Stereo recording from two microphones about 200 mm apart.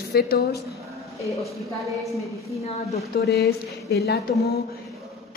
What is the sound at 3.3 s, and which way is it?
Speech, 55° left (ahead or behind).